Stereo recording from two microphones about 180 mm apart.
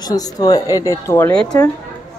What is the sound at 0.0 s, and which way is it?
A man's voice, 20° left (ahead or behind).